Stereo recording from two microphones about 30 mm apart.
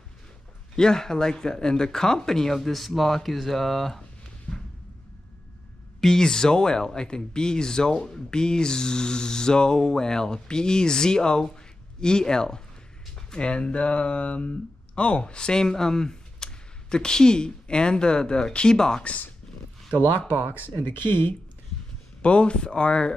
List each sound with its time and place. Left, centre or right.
0.7 s speech: left
4.5 s a sound: right
5.9 s music: centre
6.2 s speech: left
22.2 s speech: left